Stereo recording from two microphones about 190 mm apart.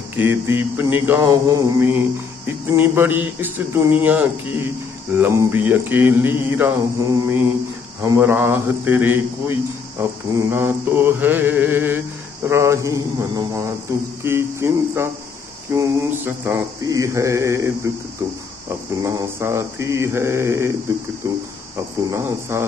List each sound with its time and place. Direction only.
0.1 s mantra: 10° right (ahead or behind)
19.0 s mantra: 15° right (ahead or behind)